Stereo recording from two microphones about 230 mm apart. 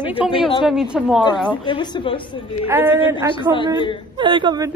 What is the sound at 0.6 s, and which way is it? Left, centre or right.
Speech, centre.